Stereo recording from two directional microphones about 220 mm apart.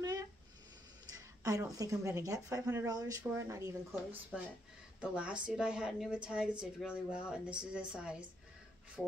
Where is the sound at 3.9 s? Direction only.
Centre (ahead or behind).